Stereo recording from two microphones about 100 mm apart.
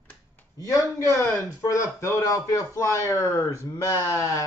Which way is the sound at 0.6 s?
35° left (ahead or behind).